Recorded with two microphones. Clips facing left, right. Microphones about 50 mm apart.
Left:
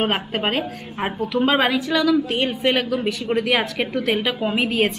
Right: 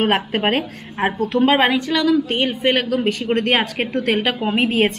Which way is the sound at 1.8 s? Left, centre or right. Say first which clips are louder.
Right 1 dB; right.